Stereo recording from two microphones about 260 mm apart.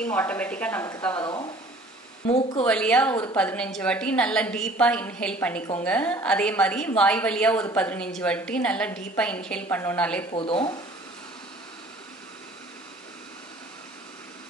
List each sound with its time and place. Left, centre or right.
0.0 s a woman's voice: centre; by 2.6 s left
2.6 s a woman's voice: centre
10.3 s speech: centre